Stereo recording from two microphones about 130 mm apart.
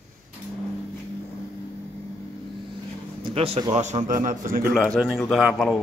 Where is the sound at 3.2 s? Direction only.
50° right (ahead or behind).